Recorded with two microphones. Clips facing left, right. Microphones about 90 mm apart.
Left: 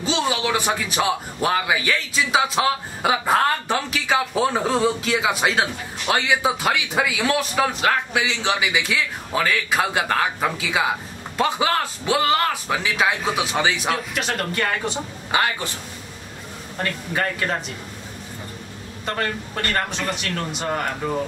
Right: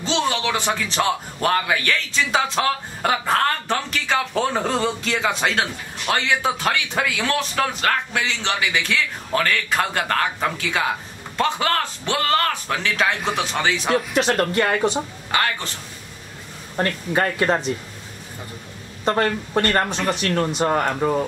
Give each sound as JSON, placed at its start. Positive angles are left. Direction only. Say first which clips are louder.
{"t": 0.0, "sound": "a man's voice", "louder": "even", "side_deg": 10}
{"t": 14.1, "sound": "speech", "louder": "right 6 dB", "side_deg": -30}
{"t": 15.3, "sound": "a man's voice", "louder": "left 1 dB", "side_deg": 15}
{"t": 16.7, "sound": "speech", "louder": "right 4 dB", "side_deg": -30}
{"t": 19.0, "sound": "speech", "louder": "right 6 dB", "side_deg": -30}